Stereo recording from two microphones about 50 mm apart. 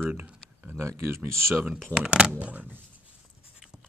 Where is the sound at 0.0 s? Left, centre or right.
Right.